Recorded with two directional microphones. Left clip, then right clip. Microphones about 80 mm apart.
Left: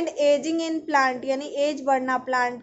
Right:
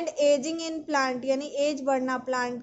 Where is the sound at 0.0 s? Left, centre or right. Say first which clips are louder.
Left 2 dB; right.